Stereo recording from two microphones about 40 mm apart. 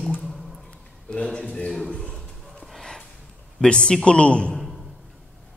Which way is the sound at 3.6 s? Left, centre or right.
Left.